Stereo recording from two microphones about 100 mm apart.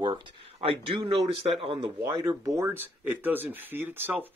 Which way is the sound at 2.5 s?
25° right (ahead or behind).